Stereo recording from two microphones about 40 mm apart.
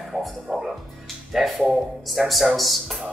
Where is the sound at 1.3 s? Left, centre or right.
Centre.